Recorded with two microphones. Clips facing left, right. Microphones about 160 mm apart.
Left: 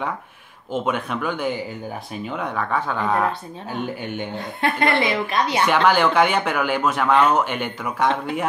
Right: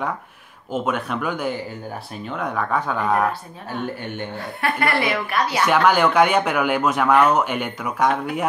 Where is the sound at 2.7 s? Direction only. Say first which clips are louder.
Right 1 dB; 5° right (ahead or behind).